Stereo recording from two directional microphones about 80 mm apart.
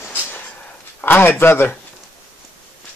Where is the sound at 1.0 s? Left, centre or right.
Left.